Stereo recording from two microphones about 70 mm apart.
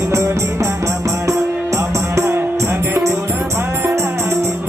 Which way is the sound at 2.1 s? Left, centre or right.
Right.